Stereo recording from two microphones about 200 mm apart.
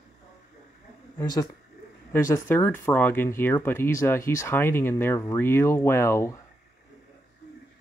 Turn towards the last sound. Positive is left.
turn(degrees=15)  # may be behind; listen again after turning